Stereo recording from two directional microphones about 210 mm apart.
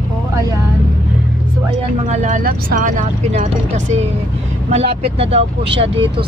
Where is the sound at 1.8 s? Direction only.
35° right (ahead or behind).